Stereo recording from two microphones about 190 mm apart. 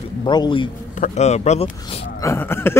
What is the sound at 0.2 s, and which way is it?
Speech, 25° left (ahead or behind).